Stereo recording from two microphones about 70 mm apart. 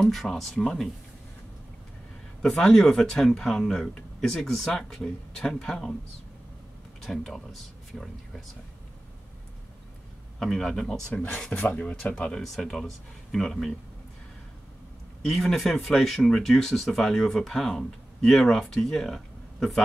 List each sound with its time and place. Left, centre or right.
0.0 s speech: centre
2.4 s speech: centre
7.0 s speech: centre
10.4 s speech: centre
12.3 s speech: centre
15.2 s speech: centre